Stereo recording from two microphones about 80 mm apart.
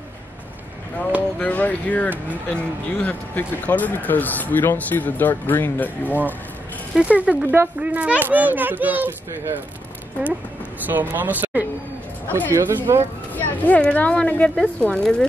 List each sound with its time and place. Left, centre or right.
1.4 s speech: centre
7.0 s a child's voice: centre
10.9 s a child's voice: right
12.3 s speech: left
12.5 s speech: right
13.3 s speech: centre